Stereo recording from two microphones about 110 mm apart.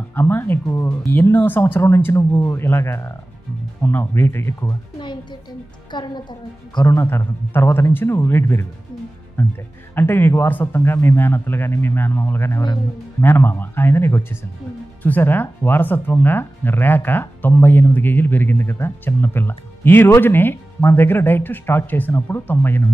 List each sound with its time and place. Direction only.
0.1 s speech: 20° left (ahead or behind)
4.9 s music: 45° left (ahead or behind)
6.9 s speech: 25° left (ahead or behind)